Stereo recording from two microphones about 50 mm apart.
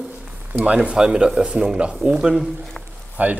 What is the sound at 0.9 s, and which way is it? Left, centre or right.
Speech, centre.